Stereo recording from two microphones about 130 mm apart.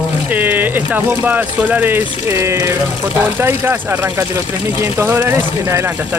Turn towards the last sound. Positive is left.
turn(degrees=-20)  # may be behind; listen again after turning